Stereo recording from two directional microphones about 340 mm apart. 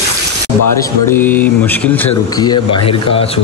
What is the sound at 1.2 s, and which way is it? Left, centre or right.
Speech, centre.